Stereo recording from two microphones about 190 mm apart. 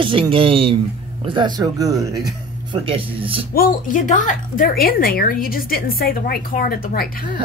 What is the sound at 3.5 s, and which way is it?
Speech, 45° left (ahead or behind).